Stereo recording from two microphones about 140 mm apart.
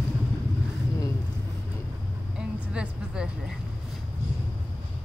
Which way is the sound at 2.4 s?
5° right (ahead or behind).